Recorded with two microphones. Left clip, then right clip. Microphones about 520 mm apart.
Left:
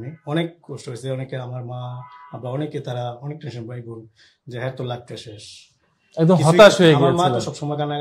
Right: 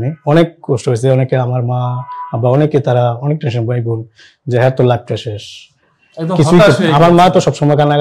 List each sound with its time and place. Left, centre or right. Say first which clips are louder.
0.0 s speech: right 14 dB; right
6.1 s a man's voice: right 2 dB; left
7.2 s speech: right 12 dB; right